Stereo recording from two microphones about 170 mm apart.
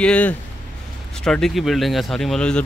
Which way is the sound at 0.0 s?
5° left (ahead or behind).